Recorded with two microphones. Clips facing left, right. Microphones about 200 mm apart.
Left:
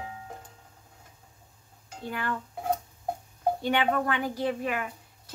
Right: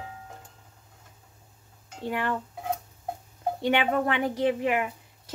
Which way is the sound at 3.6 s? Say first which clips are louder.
Right 4 dB; 20° right (ahead or behind).